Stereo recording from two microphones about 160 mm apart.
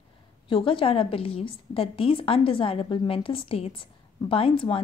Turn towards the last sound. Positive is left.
turn(degrees=35)  # may be behind; listen again after turning